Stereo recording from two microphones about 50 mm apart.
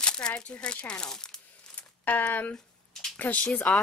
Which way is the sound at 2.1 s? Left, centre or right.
Left.